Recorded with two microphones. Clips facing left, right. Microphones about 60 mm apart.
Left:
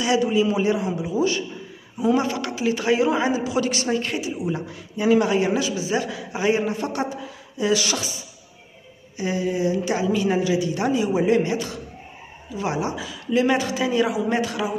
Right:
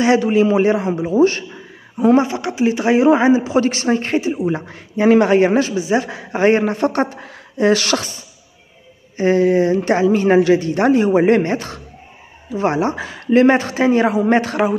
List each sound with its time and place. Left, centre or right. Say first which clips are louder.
0.0 s a man's voice: right 6 dB; right
2.2 s a man's voice: right 5 dB; right